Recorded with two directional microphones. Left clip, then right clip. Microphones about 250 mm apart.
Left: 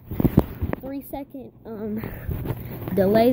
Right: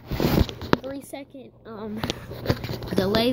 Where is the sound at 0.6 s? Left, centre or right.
Centre.